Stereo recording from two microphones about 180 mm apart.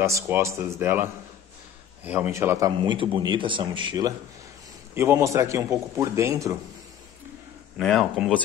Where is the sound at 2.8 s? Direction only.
25° right (ahead or behind).